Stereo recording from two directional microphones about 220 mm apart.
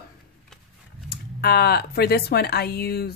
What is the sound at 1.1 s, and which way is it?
Speech, 45° left (ahead or behind).